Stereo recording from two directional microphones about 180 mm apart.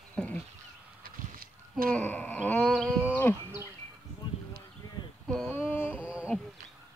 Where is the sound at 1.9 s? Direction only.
10° left (ahead or behind).